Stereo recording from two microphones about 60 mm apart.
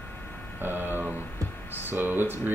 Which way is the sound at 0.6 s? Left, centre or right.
Right.